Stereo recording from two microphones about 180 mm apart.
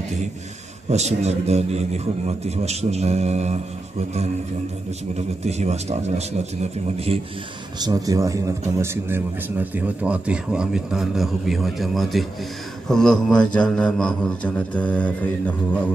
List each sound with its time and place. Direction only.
0.8 s a man's voice: 40° right (ahead or behind)
5.1 s a man's voice: 40° right (ahead or behind)
7.8 s a man's voice: 20° right (ahead or behind); by 15.5 s 10° left (ahead or behind)